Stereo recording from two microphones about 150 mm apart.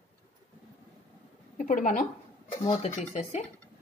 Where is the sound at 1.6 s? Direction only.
60° left (ahead or behind).